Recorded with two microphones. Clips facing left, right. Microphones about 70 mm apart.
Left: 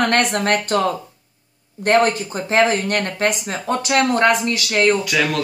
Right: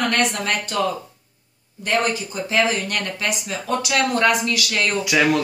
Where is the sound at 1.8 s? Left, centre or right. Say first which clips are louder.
Left 6 dB; left.